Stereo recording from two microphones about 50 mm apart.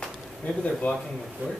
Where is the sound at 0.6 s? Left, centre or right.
Left.